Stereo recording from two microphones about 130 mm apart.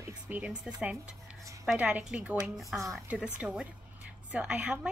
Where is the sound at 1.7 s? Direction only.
5° right (ahead or behind).